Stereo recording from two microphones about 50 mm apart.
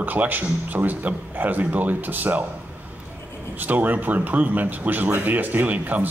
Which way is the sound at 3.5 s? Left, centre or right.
Right.